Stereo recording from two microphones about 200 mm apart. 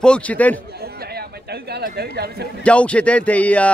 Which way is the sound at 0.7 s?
50° right (ahead or behind).